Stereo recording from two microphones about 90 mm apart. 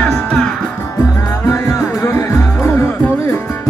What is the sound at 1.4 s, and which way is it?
Music, 30° left (ahead or behind).